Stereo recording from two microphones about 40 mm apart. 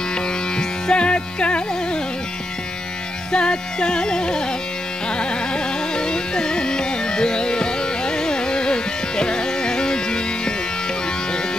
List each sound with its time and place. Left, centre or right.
0.6 s music: left
3.3 s music: left
5.5 s music: left